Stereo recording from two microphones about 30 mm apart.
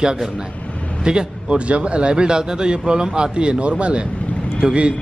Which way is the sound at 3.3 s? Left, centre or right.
Right.